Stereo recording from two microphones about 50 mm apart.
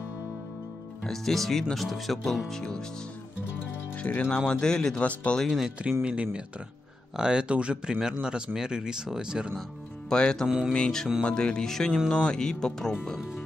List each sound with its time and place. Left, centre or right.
1.0 s speech: centre
4.0 s speech: left
5.0 s speech: left
5.5 s speech: centre
10.0 s speech: centre